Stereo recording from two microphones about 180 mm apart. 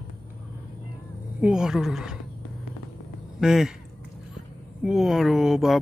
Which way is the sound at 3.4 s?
5° right (ahead or behind).